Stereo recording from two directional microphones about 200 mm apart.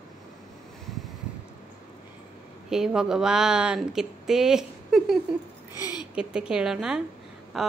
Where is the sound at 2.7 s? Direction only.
5° right (ahead or behind).